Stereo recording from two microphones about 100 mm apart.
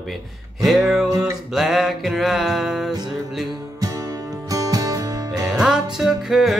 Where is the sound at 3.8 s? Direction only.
35° right (ahead or behind).